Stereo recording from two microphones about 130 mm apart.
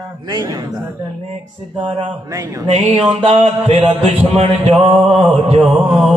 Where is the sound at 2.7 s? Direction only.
55° right (ahead or behind).